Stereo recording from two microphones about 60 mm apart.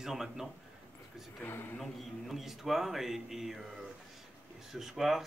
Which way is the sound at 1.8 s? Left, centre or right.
Centre.